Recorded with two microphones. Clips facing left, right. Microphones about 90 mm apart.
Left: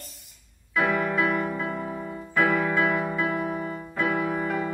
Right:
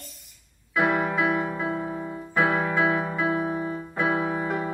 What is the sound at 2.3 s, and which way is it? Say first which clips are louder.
Keyboard: even; 20° right (ahead or behind).